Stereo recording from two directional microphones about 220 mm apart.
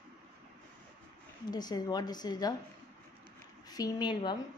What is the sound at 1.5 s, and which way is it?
A woman's voice, 15° left (ahead or behind).